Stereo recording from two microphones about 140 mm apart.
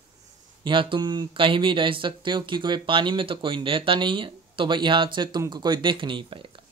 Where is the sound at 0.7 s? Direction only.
35° right (ahead or behind).